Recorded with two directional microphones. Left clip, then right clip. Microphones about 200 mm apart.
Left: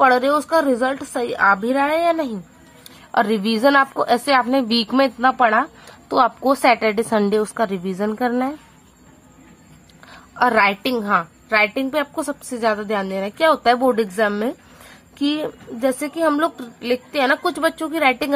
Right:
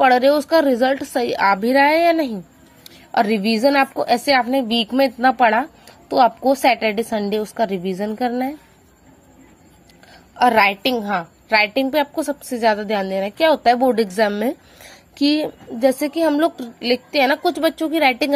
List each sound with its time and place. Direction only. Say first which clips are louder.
0.1 s a woman's voice: right 2 dB; centre (ahead or behind)
0.7 s a woman's voice: right 2 dB; 15° right (ahead or behind)
4.6 s a woman's voice: even; 45° left (ahead or behind)
5.2 s a woman's voice: right 1 dB; 15° right (ahead or behind)
10.3 s a woman's voice: right 1 dB; centre (ahead or behind)
15.1 s a woman's voice: right 3 dB; 5° right (ahead or behind)